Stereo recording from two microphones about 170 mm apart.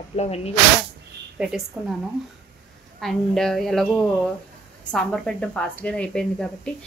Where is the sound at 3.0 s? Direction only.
Centre (ahead or behind).